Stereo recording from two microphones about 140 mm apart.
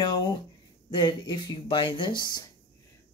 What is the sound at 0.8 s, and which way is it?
Speech, 35° left (ahead or behind).